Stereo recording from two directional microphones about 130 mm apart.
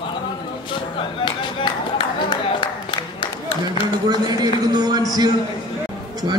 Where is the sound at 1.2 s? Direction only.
35° left (ahead or behind).